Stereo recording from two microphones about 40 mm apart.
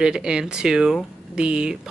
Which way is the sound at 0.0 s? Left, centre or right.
Centre.